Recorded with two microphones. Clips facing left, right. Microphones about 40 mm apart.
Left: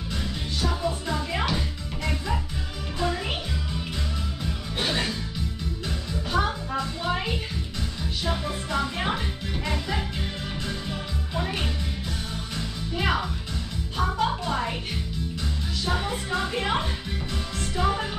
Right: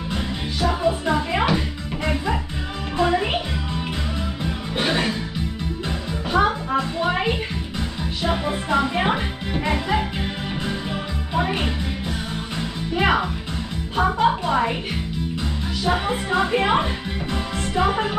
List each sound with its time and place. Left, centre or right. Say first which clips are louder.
0.6 s music: right 7 dB; right
3.0 s music: right 8 dB; right
4.7 s music: right 5 dB; right
6.3 s music: right 7 dB; right
15.8 s music: right 6 dB; right